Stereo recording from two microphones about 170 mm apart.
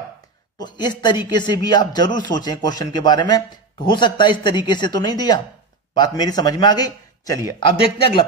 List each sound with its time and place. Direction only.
0.6 s speech: 25° left (ahead or behind)